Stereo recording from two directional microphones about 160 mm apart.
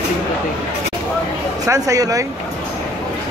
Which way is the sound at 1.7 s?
20° right (ahead or behind).